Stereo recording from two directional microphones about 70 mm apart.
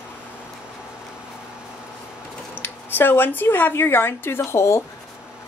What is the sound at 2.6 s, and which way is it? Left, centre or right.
Speech, left.